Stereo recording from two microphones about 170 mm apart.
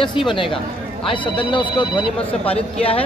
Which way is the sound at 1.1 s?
30° left (ahead or behind).